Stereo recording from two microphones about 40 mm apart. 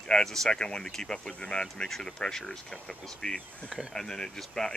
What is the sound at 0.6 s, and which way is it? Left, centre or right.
Speech, centre.